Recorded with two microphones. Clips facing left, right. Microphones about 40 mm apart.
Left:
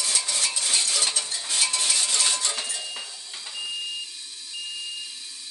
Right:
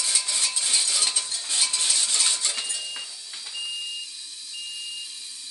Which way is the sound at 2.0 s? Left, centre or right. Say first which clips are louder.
Left 1 dB; left.